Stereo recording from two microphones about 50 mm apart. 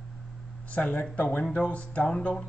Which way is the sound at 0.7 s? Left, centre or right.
Left.